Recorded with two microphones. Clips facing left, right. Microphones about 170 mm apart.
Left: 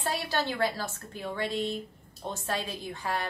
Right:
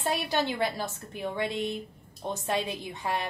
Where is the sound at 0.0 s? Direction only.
20° right (ahead or behind).